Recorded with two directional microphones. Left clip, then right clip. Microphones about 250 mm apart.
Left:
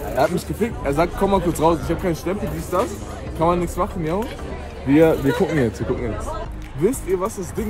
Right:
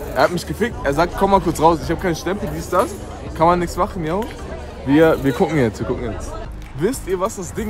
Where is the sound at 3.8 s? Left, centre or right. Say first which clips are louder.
Right 2 dB; centre.